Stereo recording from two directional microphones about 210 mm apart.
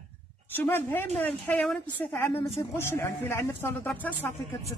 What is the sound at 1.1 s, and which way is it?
Speech, 10° left (ahead or behind).